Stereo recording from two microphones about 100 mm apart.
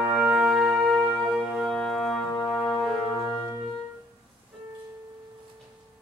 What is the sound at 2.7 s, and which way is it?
Brass instrument, centre (ahead or behind).